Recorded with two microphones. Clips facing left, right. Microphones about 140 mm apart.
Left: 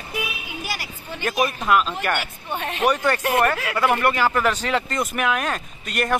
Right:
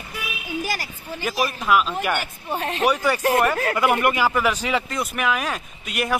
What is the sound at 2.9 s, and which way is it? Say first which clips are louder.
A man's voice: right 1 dB; 10° right (ahead or behind).